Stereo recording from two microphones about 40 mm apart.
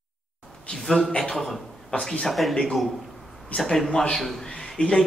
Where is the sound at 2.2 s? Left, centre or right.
Centre.